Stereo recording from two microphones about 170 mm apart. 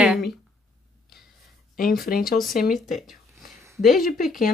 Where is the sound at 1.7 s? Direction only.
55° left (ahead or behind).